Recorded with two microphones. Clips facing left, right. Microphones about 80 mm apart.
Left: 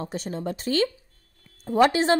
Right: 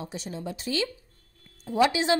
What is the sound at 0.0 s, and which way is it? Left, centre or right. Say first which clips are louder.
Speech: left 5 dB; left.